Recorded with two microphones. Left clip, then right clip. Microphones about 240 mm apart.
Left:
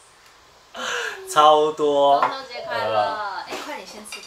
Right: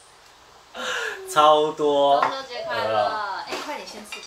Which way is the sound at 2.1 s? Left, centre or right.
Centre.